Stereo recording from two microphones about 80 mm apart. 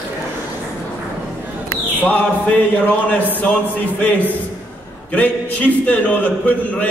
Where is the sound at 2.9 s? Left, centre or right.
Left.